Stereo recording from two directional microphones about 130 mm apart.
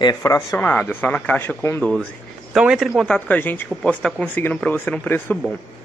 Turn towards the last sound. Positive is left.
turn(degrees=10)  # may be behind; listen again after turning